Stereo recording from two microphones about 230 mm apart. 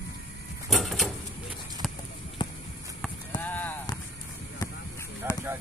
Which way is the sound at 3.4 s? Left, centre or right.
Centre.